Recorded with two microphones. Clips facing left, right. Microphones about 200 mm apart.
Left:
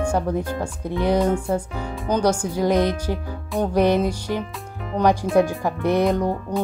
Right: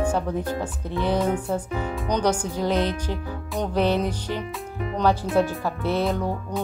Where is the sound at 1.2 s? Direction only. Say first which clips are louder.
Left 3 dB; centre (ahead or behind).